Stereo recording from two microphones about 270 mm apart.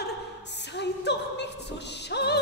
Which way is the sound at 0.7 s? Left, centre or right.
Left.